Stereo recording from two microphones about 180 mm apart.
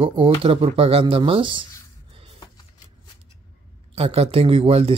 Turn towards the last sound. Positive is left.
turn(degrees=-30)  # may be behind; listen again after turning